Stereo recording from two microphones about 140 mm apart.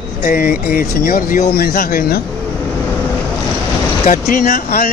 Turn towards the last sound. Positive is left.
turn(degrees=85)